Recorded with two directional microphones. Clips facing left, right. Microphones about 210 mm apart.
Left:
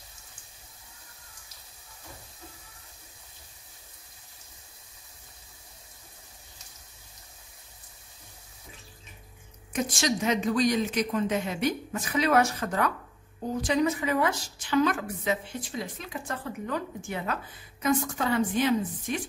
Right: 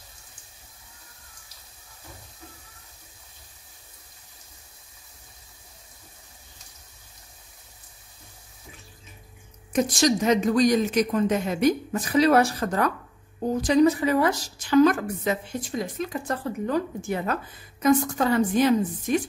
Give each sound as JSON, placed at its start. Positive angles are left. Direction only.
{"t": 9.7, "sound": "a woman's voice", "side_deg": -40}